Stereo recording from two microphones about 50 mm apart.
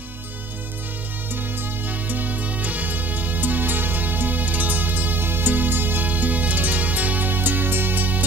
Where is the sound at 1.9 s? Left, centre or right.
Right.